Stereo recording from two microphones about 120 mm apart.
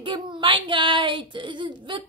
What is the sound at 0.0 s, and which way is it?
Speech, 45° right (ahead or behind).